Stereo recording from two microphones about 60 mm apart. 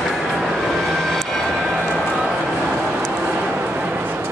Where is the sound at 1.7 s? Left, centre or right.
Centre.